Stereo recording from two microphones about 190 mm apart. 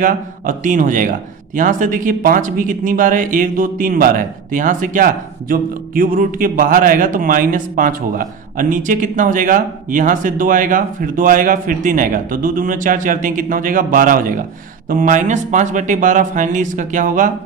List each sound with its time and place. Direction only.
0.0 s a man's voice: 45° right (ahead or behind)